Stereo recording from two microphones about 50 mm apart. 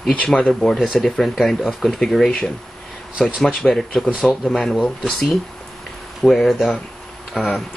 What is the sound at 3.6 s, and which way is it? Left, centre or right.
Speech, centre.